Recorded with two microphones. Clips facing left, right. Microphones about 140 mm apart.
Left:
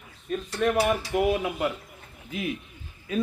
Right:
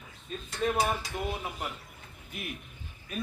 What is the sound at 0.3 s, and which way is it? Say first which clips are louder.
Speech: left 6 dB; 70° left (ahead or behind).